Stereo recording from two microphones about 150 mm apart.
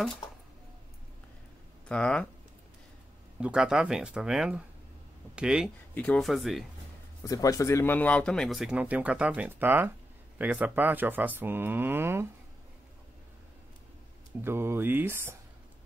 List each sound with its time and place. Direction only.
1.9 s speech: 5° left (ahead or behind)
3.3 s speech: 5° right (ahead or behind)
5.9 s speech: 5° left (ahead or behind)
7.2 s speech: 20° left (ahead or behind); by 12.3 s 15° right (ahead or behind)
14.4 s speech: 15° right (ahead or behind)